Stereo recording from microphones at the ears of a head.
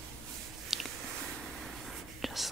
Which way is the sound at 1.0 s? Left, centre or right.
Right.